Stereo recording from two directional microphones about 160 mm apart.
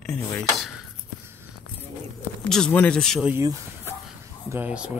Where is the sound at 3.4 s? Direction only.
20° right (ahead or behind).